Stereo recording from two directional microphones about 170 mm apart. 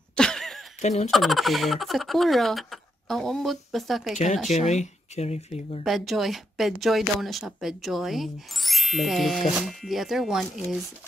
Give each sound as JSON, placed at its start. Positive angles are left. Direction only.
{"t": 0.1, "sound": "a sound", "side_deg": 5}
{"t": 0.7, "sound": "speech", "side_deg": 40}
{"t": 1.1, "sound": "speech", "side_deg": 0}
{"t": 4.5, "sound": "speech", "side_deg": 40}
{"t": 5.9, "sound": "speech", "side_deg": 0}